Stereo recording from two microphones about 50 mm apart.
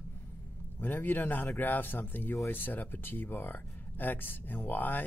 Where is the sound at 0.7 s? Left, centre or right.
Left.